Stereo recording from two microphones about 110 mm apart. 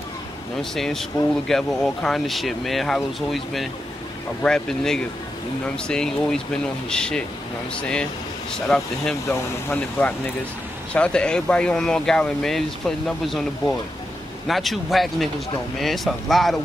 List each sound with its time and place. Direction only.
0.6 s speech: 5° left (ahead or behind)
9.3 s speech: 15° left (ahead or behind); by 16.5 s centre (ahead or behind)